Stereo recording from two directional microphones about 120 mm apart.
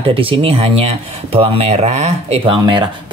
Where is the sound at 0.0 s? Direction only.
50° right (ahead or behind).